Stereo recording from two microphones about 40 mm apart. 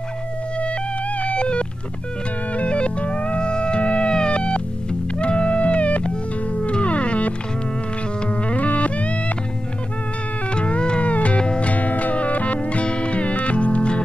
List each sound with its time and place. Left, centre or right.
0.6 s music: left
10.5 s music: left
11.7 s music: left